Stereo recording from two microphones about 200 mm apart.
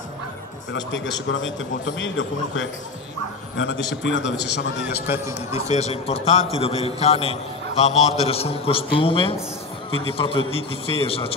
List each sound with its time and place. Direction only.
1.3 s a man's voice: 70° left (ahead or behind)
4.8 s a man's voice: 10° right (ahead or behind)
5.5 s a man's voice: 35° left (ahead or behind)